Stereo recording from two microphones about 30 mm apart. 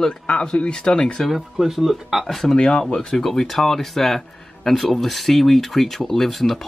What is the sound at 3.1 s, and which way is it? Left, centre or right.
Speech, centre.